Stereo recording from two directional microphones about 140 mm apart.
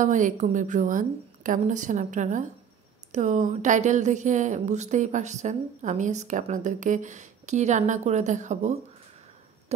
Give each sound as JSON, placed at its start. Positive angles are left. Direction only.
{"t": 0.0, "sound": "a woman's voice", "side_deg": -65}
{"t": 9.7, "sound": "owl", "side_deg": -50}